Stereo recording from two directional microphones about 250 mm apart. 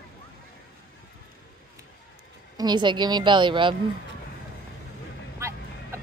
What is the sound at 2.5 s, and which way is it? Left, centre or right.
Speech, centre.